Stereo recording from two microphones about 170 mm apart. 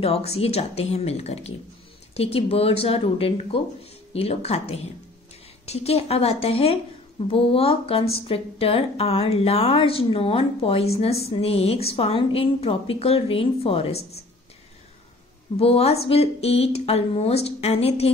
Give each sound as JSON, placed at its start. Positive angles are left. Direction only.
{"t": 0.0, "sound": "a woman's voice", "side_deg": 35}
{"t": 15.5, "sound": "a woman's voice", "side_deg": 35}